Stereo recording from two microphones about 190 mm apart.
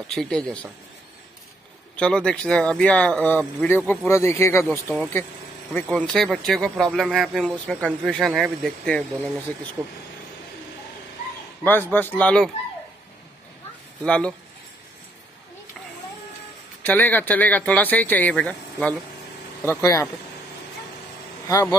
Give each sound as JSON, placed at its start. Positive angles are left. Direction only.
{"t": 0.1, "sound": "speech", "side_deg": 5}
{"t": 2.0, "sound": "speech", "side_deg": 5}
{"t": 11.6, "sound": "speech", "side_deg": 10}
{"t": 14.0, "sound": "speech", "side_deg": 5}
{"t": 16.8, "sound": "speech", "side_deg": 10}
{"t": 19.6, "sound": "speech", "side_deg": 15}